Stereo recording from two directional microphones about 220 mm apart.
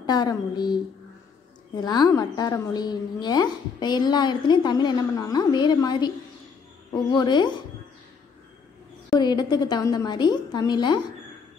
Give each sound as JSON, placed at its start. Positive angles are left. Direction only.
{"t": 0.0, "sound": "a woman's voice", "side_deg": 20}
{"t": 1.8, "sound": "a woman's voice", "side_deg": 20}
{"t": 9.1, "sound": "a woman's voice", "side_deg": 20}